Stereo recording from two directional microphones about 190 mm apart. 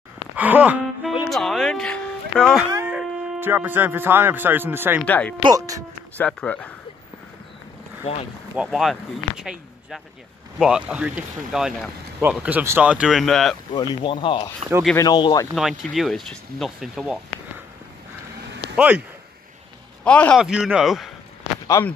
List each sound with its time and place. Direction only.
0.4 s speech: 10° right (ahead or behind)
2.7 s speech: 10° right (ahead or behind)
5.0 s speech: 10° left (ahead or behind)
5.4 s speech: 20° right (ahead or behind)
6.1 s speech: 5° left (ahead or behind)
8.0 s speech: 35° left (ahead or behind)
8.6 s speech: centre (ahead or behind)
14.0 s speech: 25° left (ahead or behind)
15.5 s speech: centre (ahead or behind)
18.8 s speech: 5° right (ahead or behind)
20.1 s speech: 5° left (ahead or behind)